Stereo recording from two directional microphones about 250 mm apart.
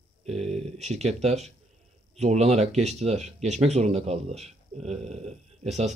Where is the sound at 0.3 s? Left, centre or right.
Right.